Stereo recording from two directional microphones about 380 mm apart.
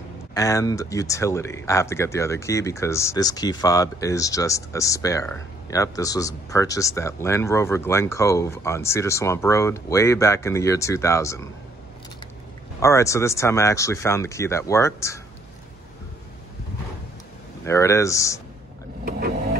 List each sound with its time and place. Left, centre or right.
0.3 s speech: centre
12.8 s speech: centre
17.6 s speech: centre
19.0 s vehicle: right